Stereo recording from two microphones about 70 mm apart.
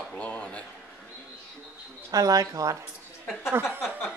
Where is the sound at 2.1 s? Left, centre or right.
Right.